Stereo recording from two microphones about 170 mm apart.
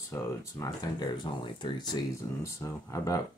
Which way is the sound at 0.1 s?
20° left (ahead or behind).